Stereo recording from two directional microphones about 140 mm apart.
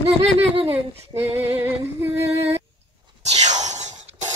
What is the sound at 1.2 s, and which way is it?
Music, 15° right (ahead or behind).